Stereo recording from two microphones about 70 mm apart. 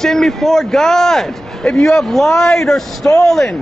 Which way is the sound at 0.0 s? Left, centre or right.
Centre.